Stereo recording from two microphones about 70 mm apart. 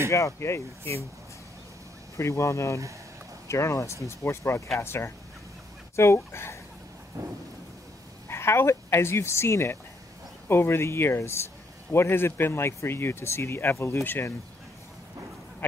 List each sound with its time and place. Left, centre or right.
0.1 s speech: left
2.1 s speech: left
7.2 s thunder: right
8.3 s speech: left